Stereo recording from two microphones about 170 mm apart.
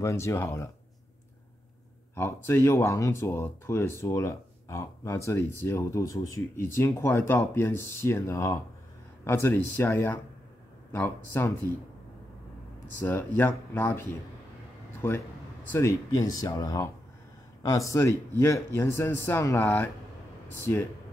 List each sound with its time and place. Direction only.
0.0 s speech: 15° left (ahead or behind)
2.1 s speech: 15° left (ahead or behind)
13.0 s speech: 10° left (ahead or behind)